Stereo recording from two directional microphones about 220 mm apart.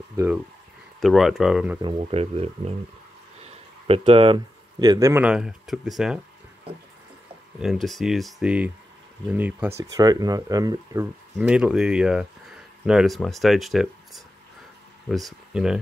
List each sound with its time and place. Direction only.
1.0 s speech: centre (ahead or behind)
1.8 s speech: 25° right (ahead or behind); by 6.2 s centre (ahead or behind)
7.6 s speech: centre (ahead or behind)
11.3 s speech: 5° right (ahead or behind)